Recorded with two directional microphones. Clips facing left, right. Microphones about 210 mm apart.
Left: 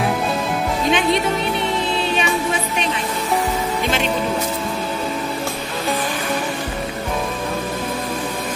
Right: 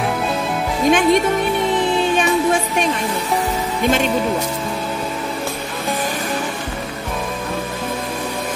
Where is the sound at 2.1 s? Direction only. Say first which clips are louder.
Right 4 dB; 45° right (ahead or behind).